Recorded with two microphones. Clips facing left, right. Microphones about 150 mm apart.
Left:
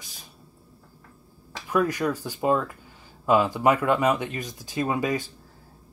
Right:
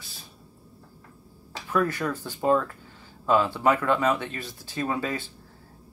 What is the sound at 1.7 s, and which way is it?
Speech, 15° left (ahead or behind).